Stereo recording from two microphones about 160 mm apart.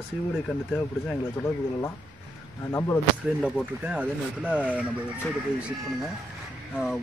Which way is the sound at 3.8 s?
10° right (ahead or behind).